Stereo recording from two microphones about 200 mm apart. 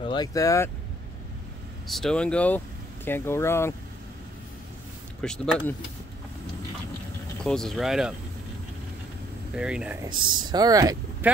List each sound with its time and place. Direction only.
0.0 s speech: 20° left (ahead or behind)
1.9 s speech: centre (ahead or behind)
5.2 s speech: 5° left (ahead or behind)
7.4 s speech: centre (ahead or behind)
9.6 s speech: 5° right (ahead or behind)
10.0 s speech: 20° right (ahead or behind)